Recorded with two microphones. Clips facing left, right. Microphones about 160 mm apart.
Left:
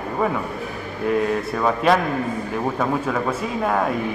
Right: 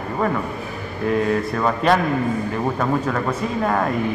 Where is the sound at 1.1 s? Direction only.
Centre (ahead or behind).